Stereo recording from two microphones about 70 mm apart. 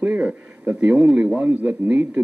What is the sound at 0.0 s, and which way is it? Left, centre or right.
Speech, centre.